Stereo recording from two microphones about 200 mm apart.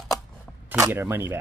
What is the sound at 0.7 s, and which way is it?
Coin, 10° right (ahead or behind).